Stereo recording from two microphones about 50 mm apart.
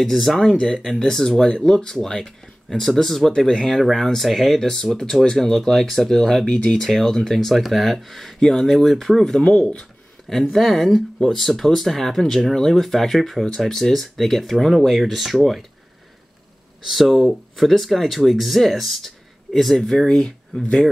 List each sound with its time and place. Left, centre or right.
0.0 s speech: centre
0.5 s speech: centre
6.4 s speech: left
6.8 s speech: centre
9.4 s speech: left
10.5 s speech: centre
16.8 s speech: centre